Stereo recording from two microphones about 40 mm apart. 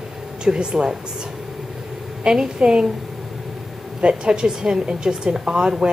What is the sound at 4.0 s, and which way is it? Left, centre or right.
A woman's voice, right.